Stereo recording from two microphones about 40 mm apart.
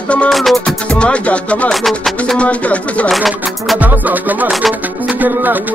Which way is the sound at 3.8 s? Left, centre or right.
Right.